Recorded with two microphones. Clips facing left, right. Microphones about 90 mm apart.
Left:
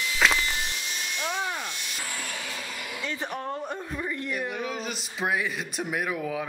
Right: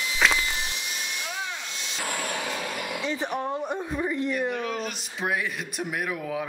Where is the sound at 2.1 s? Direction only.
65° right (ahead or behind).